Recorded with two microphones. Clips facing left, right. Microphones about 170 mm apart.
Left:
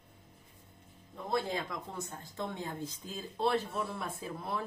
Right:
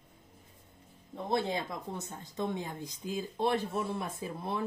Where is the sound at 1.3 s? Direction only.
25° right (ahead or behind).